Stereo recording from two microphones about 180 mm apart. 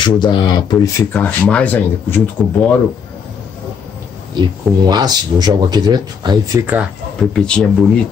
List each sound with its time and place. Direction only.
0.0 s speech: 25° left (ahead or behind)
1.1 s speech: 5° left (ahead or behind)
4.4 s speech: 20° right (ahead or behind)
6.6 s speech: 10° right (ahead or behind)
7.2 s speech: 5° left (ahead or behind)